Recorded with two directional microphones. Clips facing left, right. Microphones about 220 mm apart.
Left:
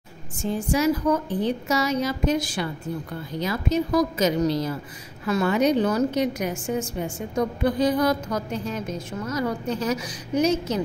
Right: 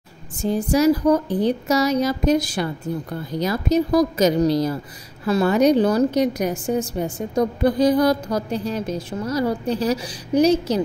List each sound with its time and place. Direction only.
0.4 s a woman's voice: 40° right (ahead or behind)